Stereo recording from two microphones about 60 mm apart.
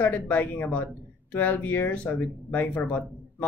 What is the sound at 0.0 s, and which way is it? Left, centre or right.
Speech, left.